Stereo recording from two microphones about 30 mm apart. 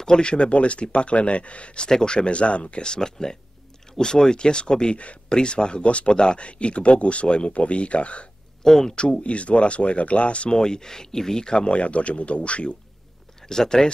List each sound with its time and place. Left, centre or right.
0.2 s speech: left
1.9 s speech: left
5.8 s speech: left
6.1 s speech: left
8.6 s speech: centre
9.2 s speech: left
10.5 s speech: left
11.4 s speech: left
11.7 s speech: left
13.4 s speech: centre